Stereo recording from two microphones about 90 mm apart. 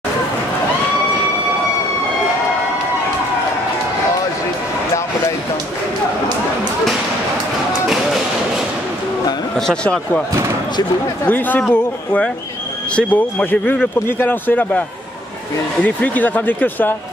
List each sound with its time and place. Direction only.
9.6 s speech: 10° left (ahead or behind)
11.2 s speech: 20° left (ahead or behind)